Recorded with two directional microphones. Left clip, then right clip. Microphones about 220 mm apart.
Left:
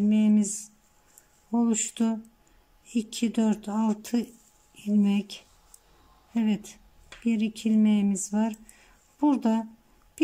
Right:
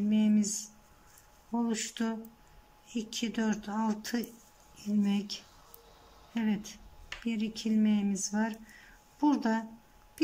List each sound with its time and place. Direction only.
0.1 s a sound: 15° left (ahead or behind)
1.5 s speech: 15° left (ahead or behind)
6.3 s speech: 15° left (ahead or behind)